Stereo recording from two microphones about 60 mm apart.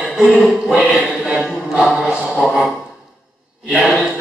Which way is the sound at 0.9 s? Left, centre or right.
Centre.